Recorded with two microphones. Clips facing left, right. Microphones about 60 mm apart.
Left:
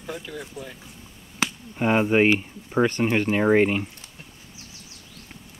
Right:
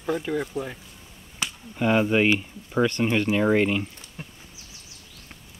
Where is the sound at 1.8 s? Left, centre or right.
Left.